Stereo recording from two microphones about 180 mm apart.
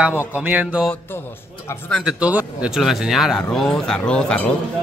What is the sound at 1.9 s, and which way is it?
Speech, 5° right (ahead or behind).